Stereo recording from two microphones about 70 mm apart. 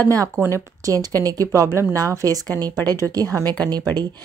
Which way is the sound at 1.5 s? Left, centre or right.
Right.